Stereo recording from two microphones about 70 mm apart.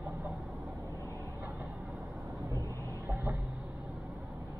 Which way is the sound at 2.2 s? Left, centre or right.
Right.